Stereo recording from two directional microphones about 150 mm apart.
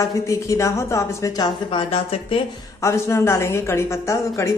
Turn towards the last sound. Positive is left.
turn(degrees=20)  # may be behind; listen again after turning